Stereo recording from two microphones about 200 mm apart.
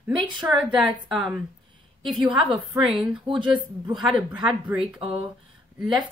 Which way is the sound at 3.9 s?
Centre (ahead or behind).